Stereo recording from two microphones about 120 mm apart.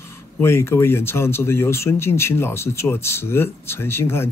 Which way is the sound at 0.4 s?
20° left (ahead or behind).